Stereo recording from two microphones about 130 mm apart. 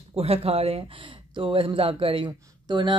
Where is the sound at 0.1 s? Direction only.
50° right (ahead or behind).